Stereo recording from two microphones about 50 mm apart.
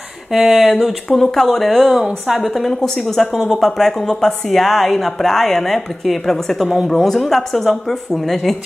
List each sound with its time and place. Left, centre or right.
0.3 s speech: centre